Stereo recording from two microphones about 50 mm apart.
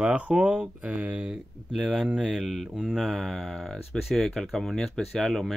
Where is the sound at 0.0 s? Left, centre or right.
Right.